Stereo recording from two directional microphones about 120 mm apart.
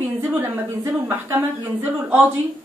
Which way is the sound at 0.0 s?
15° right (ahead or behind).